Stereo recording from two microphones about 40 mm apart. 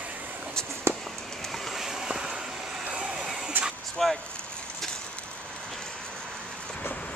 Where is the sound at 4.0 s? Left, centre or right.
Centre.